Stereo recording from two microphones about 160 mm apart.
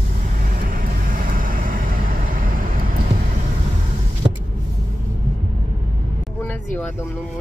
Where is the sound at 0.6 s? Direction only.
60° right (ahead or behind).